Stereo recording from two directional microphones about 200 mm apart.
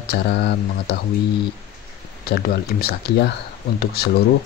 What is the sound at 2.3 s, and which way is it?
Speech, 55° left (ahead or behind).